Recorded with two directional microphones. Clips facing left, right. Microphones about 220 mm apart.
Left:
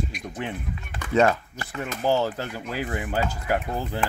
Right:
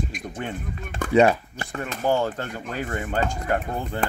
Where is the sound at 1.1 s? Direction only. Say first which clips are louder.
Right 3 dB; 15° right (ahead or behind).